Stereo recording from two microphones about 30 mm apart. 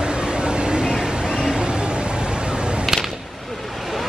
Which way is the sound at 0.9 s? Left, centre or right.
Right.